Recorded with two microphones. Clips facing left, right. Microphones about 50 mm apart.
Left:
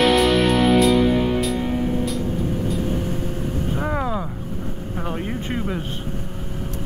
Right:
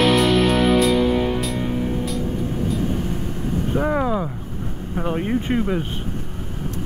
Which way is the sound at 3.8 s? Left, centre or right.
Centre.